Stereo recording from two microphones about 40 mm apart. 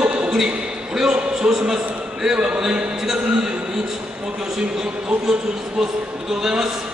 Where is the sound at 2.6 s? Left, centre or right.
Centre.